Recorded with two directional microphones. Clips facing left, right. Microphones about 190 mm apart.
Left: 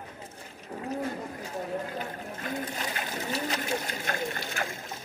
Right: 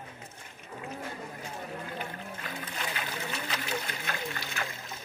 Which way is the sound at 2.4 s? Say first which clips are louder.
Left 7 dB; 45° left (ahead or behind).